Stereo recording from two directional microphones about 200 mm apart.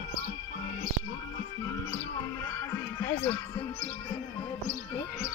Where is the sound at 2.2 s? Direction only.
15° left (ahead or behind).